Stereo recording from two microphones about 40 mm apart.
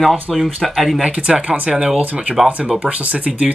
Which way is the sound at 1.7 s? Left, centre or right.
Centre.